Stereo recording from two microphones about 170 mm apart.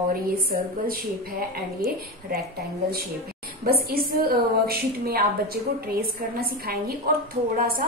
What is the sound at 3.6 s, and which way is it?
A woman's voice, 60° right (ahead or behind).